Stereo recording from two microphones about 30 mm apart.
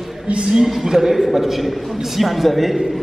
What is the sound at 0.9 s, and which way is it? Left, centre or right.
A man's voice, centre.